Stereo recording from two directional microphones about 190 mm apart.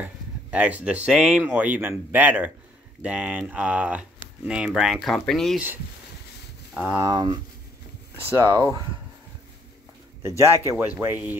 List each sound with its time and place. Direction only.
0.0 s speech: 5° right (ahead or behind)
6.7 s speech: 5° right (ahead or behind)
7.1 s speech: 25° right (ahead or behind)
10.2 s speech: 15° right (ahead or behind)